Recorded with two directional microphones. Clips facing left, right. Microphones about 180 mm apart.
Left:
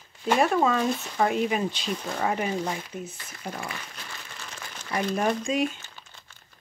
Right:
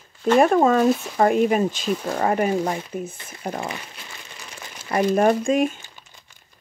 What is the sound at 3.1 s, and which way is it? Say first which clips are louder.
Speech: right 4 dB; 25° right (ahead or behind).